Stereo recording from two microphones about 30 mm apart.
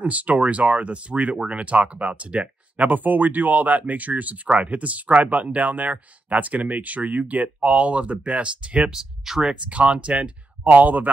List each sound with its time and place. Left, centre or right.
0.0 s speech: right
2.8 s speech: right
4.5 s speech: right
7.4 s speech: right
8.9 s speech: centre
9.7 s speech: right
10.7 s speech: right